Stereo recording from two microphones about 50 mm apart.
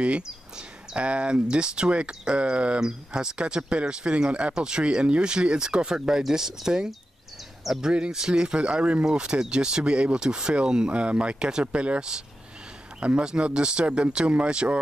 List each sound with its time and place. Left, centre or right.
0.0 s speech: right